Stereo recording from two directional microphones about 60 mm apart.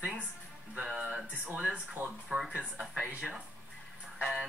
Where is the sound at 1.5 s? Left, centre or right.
Centre.